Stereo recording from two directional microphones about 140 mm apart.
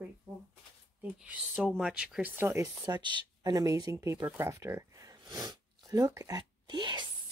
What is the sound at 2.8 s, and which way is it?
Speech, 30° right (ahead or behind).